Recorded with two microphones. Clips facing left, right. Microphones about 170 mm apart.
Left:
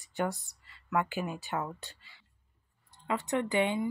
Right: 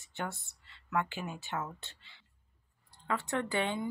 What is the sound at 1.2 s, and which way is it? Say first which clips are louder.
Speech: left 3 dB; 15° left (ahead or behind).